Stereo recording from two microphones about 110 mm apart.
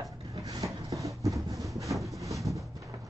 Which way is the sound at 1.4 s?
30° right (ahead or behind).